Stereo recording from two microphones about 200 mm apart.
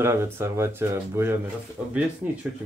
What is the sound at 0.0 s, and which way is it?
Speech, 10° right (ahead or behind).